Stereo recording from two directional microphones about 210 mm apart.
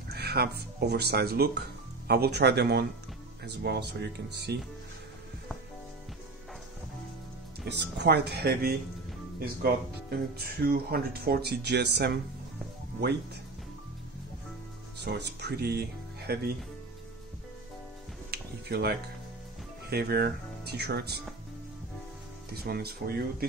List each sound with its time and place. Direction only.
0.1 s speech: 50° right (ahead or behind)
7.6 s speech: 55° right (ahead or behind)
15.0 s speech: 50° right (ahead or behind)
18.3 s music: 50° right (ahead or behind)
19.9 s speech: 50° right (ahead or behind)
22.5 s speech: 50° right (ahead or behind)